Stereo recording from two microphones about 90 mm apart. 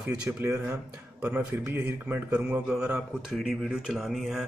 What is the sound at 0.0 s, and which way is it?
Speech, 15° right (ahead or behind).